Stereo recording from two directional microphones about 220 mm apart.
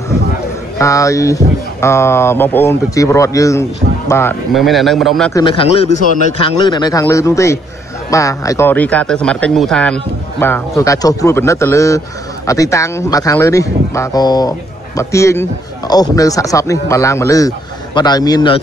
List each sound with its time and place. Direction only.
0.7 s a man's voice: 15° left (ahead or behind)
4.5 s a man's voice: centre (ahead or behind)
5.3 s a man's voice: 25° left (ahead or behind)